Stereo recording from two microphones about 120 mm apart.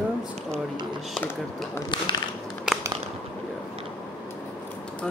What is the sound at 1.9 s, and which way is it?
Speech, 40° left (ahead or behind).